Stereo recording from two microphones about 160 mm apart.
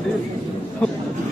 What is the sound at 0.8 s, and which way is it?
Speech, 5° left (ahead or behind).